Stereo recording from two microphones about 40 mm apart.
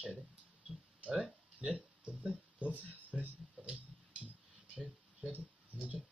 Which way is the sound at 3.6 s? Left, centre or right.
Right.